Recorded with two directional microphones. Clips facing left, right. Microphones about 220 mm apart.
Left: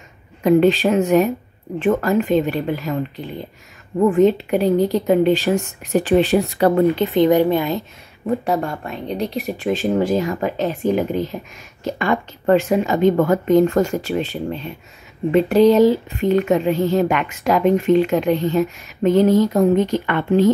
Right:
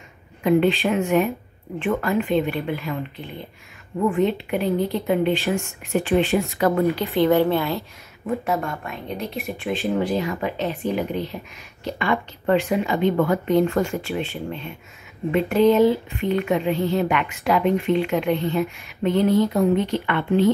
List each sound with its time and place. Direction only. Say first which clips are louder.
0.4 s a woman's voice: left 4 dB; 40° left (ahead or behind)
4.1 s a woman's voice: left 8 dB; 40° left (ahead or behind)
6.6 s speech: left 5 dB; 30° left (ahead or behind)
7.2 s a woman's voice: left 3 dB; 15° left (ahead or behind)
8.3 s a woman's voice: left 4 dB; 35° left (ahead or behind)